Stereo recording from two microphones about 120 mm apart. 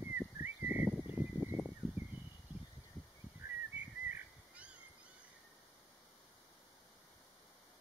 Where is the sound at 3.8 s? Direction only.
10° right (ahead or behind).